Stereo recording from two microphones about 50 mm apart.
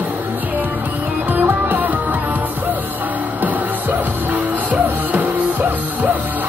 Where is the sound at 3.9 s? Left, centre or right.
Right.